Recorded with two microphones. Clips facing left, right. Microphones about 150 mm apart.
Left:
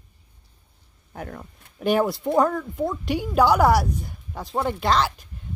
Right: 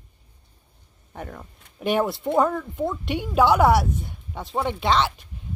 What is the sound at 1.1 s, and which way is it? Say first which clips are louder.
Speech: left 1 dB; centre (ahead or behind).